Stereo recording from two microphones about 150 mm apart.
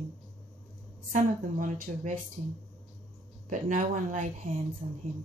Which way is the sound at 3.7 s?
60° right (ahead or behind).